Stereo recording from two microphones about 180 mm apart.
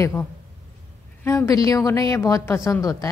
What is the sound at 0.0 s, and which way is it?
A woman's voice, 15° left (ahead or behind).